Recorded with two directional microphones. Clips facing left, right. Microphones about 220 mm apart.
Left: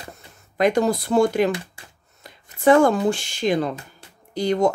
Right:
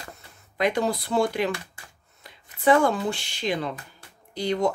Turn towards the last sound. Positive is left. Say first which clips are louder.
# left 5 dB
turn(degrees=45)  # may be behind; listen again after turning